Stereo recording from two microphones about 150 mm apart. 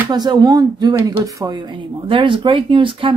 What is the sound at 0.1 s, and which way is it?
Speech, 25° right (ahead or behind).